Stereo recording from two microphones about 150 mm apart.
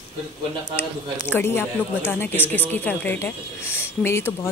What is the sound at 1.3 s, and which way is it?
A woman's voice, 15° left (ahead or behind).